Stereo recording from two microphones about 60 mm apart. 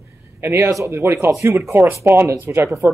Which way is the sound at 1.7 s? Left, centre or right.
Right.